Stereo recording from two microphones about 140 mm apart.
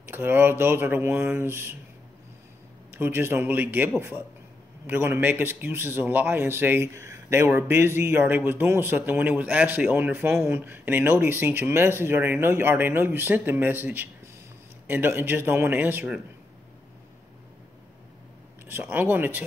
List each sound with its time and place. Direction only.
0.0 s speech: 15° right (ahead or behind)
2.9 s speech: 15° right (ahead or behind)
18.7 s speech: 15° right (ahead or behind)